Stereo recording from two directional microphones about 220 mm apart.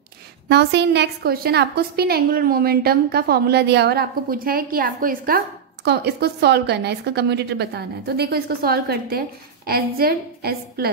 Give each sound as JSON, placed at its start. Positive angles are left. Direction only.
{"t": 0.5, "sound": "a woman's voice", "side_deg": -50}